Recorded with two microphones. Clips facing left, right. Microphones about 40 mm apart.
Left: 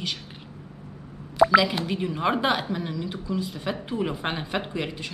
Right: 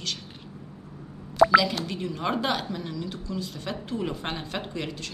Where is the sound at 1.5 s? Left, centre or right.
Centre.